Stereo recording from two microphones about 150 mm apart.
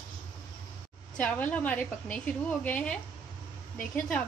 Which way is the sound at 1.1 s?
10° left (ahead or behind).